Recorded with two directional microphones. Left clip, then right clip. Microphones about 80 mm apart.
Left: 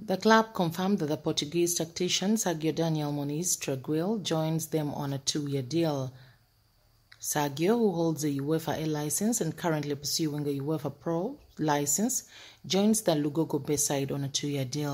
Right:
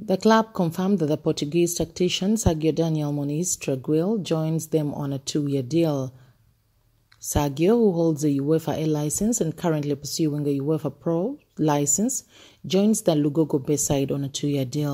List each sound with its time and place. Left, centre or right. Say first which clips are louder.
0.0 s a woman's voice: right 4 dB; right
4.6 s a woman's voice: right 6 dB; right
7.2 s a woman's voice: right 5 dB; right
9.2 s speech: right 6 dB; right
9.6 s a woman's voice: right 5 dB; right